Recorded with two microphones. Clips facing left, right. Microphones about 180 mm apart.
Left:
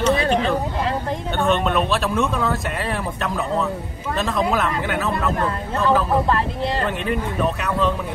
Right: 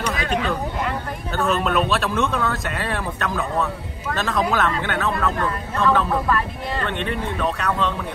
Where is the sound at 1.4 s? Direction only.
Centre (ahead or behind).